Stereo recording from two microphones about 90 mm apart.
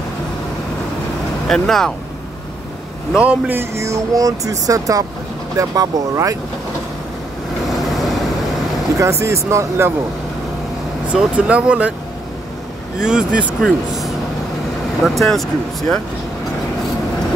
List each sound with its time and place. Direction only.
1.5 s speech: 5° left (ahead or behind)
3.2 s speech: 15° right (ahead or behind)
3.5 s speech: 35° right (ahead or behind)
7.7 s vehicle: centre (ahead or behind)
8.9 s speech: 35° right (ahead or behind)
11.1 s speech: 15° right (ahead or behind)
13.0 s speech: 10° right (ahead or behind)